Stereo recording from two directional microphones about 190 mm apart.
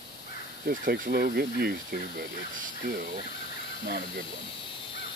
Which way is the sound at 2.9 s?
50° right (ahead or behind).